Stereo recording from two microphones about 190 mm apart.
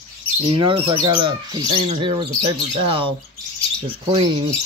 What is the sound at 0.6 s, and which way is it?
Speech, 25° right (ahead or behind).